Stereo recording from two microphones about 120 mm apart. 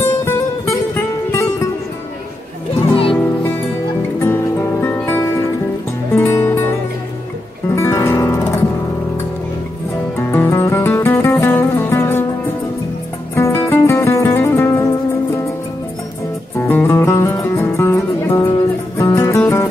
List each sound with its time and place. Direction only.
0.2 s music: 20° left (ahead or behind)
2.9 s music: 45° left (ahead or behind)
4.2 s music: 20° left (ahead or behind)
7.7 s music: 20° left (ahead or behind)
10.1 s music: 20° left (ahead or behind)
13.3 s music: 20° left (ahead or behind)
16.6 s music: 20° left (ahead or behind)